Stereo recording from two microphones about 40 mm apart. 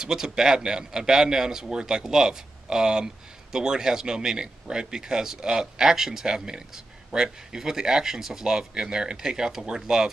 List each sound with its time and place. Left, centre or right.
0.0 s speech: centre